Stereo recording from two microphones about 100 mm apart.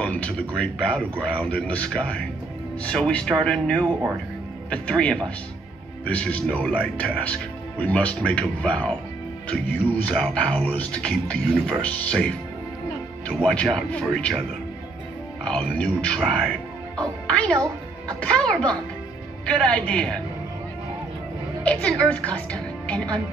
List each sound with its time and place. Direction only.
0.0 s speech: 10° left (ahead or behind)
15.4 s speech: 10° left (ahead or behind)
16.2 s music: 5° left (ahead or behind)
17.3 s speech: 10° left (ahead or behind)
21.6 s speech: 10° left (ahead or behind)